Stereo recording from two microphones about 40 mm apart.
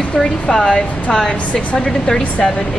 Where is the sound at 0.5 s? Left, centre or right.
Centre.